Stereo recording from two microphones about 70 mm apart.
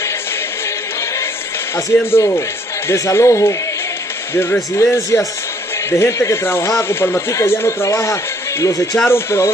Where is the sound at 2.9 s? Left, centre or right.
Left.